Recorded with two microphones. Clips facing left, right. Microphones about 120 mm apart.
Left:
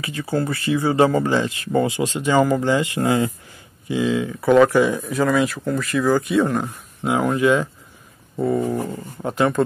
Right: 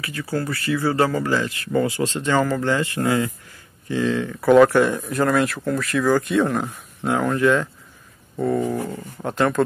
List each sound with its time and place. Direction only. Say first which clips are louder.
0.0 s speech: left 3 dB; 20° left (ahead or behind)
3.9 s speech: left 1 dB; 10° left (ahead or behind)
8.4 s dog: left 1 dB; 10° left (ahead or behind)
8.8 s speech: left 1 dB; 5° left (ahead or behind)